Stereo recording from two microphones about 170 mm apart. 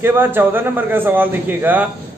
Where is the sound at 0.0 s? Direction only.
10° right (ahead or behind).